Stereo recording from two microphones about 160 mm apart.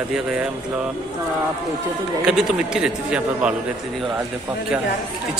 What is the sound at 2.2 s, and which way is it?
A man's voice, 5° right (ahead or behind).